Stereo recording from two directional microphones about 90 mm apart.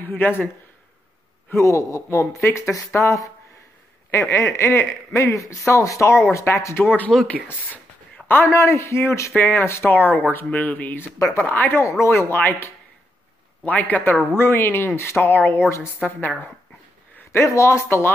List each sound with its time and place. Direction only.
0.0 s speech: 25° left (ahead or behind)
1.5 s speech: 35° left (ahead or behind)
7.1 s speech: 5° left (ahead or behind)
8.3 s speech: 25° left (ahead or behind)
17.1 s speech: 30° left (ahead or behind)